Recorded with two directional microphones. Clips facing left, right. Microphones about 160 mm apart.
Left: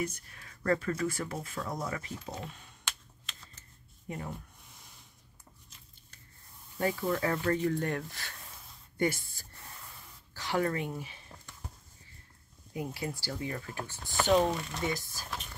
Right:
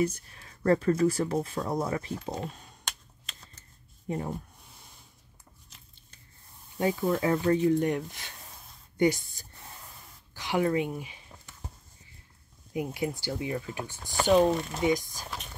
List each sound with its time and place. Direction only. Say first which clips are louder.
0.0 s speech: right 7 dB; 30° right (ahead or behind)
4.1 s speech: right 7 dB; 35° right (ahead or behind)
6.8 s a woman's voice: right 4 dB; 20° right (ahead or behind)
12.7 s speech: right 5 dB; 20° right (ahead or behind)